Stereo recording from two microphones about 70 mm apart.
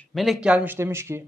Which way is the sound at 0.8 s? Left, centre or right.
Right.